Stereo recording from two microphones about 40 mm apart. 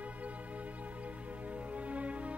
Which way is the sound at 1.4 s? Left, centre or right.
Right.